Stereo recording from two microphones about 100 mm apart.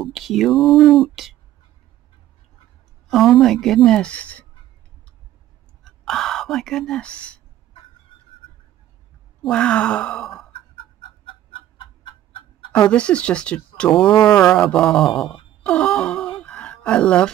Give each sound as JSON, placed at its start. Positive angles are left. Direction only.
{"t": 0.0, "sound": "a woman's voice", "side_deg": 0}
{"t": 3.1, "sound": "a woman's voice", "side_deg": 0}
{"t": 5.9, "sound": "speech", "side_deg": 5}
{"t": 8.1, "sound": "a sound", "side_deg": 60}
{"t": 9.4, "sound": "speech", "side_deg": 10}
{"t": 12.9, "sound": "a woman's voice", "side_deg": 10}
{"t": 14.4, "sound": "wail", "side_deg": 5}